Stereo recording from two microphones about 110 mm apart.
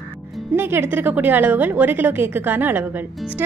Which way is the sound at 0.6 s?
20° right (ahead or behind).